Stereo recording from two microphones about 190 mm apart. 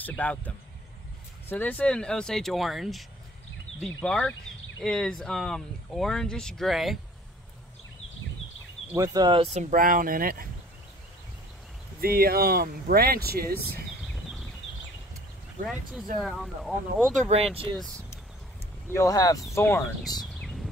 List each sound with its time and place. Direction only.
0.0 s speech: 10° left (ahead or behind)
8.9 s speech: 20° right (ahead or behind); by 10.5 s 50° right (ahead or behind)
12.0 s speech: 50° right (ahead or behind)
15.6 s speech: centre (ahead or behind)
18.9 s speech: 20° left (ahead or behind)
20.2 s a sound: centre (ahead or behind)